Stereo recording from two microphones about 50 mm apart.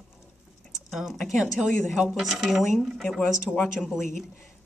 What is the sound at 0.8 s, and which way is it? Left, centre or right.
Speech, centre.